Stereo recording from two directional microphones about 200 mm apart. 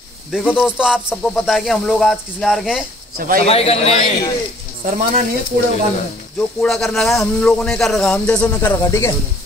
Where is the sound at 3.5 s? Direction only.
30° left (ahead or behind).